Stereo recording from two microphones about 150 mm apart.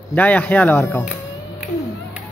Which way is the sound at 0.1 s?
10° left (ahead or behind).